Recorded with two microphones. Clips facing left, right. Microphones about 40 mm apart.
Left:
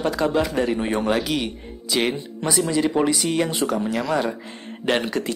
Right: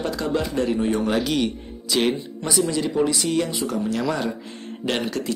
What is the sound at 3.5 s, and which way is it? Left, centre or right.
Speech, left.